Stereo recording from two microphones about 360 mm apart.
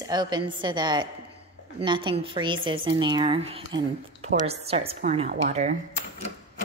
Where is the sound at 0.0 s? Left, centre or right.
Centre.